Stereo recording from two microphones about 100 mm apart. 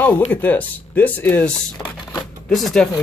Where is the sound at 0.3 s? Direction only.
20° left (ahead or behind).